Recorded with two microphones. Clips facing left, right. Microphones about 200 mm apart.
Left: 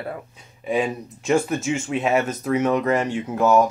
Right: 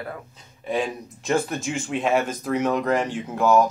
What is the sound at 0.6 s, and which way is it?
Speech, 10° left (ahead or behind).